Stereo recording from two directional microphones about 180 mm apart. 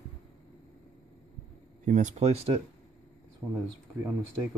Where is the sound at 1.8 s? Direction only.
45° right (ahead or behind).